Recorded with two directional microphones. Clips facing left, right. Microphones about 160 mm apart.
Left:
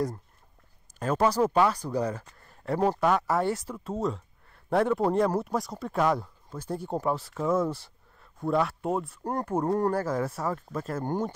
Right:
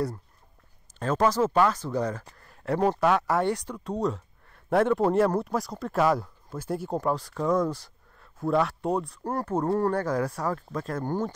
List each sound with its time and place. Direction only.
0.9 s speech: 10° left (ahead or behind)
1.7 s speech: 35° left (ahead or behind)
2.6 s speech: 5° left (ahead or behind)
7.0 s speech: 5° left (ahead or behind)
9.2 s speech: 15° left (ahead or behind)
9.9 s speech: 5° left (ahead or behind)
11.0 s speech: 20° left (ahead or behind)